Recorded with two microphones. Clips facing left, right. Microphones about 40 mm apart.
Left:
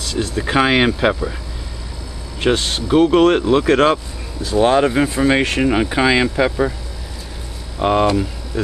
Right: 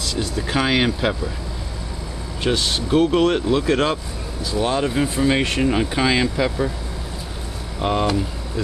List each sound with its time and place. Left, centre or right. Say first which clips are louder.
0.4 s speech: left 5 dB; left
2.4 s speech: left 4 dB; left
2.9 s speech: left 5 dB; left
7.8 s speech: left 6 dB; centre